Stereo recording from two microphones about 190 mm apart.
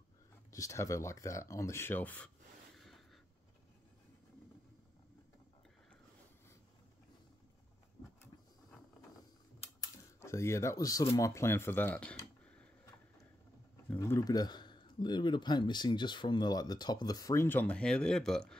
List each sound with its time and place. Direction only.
0.5 s speech: 15° left (ahead or behind)
10.2 s speech: 15° left (ahead or behind)
13.8 s speech: 15° left (ahead or behind)